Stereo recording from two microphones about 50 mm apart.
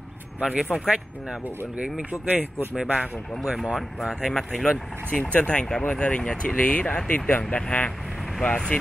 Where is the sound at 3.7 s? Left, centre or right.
Centre.